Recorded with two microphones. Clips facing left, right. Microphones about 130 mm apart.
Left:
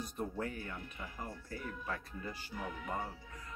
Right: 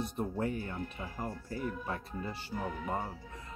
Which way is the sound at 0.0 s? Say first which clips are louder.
Right 5 dB; 25° right (ahead or behind).